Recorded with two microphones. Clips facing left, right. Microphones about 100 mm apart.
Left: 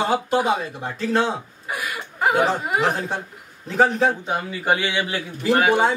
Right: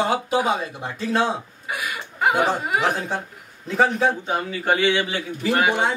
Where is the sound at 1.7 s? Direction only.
Centre (ahead or behind).